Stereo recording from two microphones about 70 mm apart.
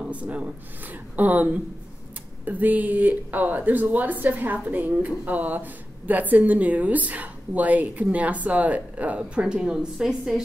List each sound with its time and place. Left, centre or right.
0.0 s speech: centre